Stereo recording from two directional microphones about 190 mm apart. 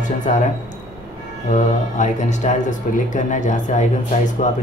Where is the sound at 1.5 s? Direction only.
40° left (ahead or behind).